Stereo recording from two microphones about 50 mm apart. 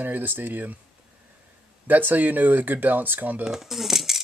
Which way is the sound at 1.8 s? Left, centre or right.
Right.